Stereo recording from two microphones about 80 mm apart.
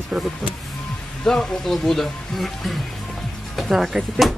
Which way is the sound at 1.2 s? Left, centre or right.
Centre.